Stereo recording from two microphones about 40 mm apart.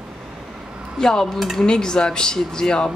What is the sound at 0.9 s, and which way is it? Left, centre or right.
Speech, centre.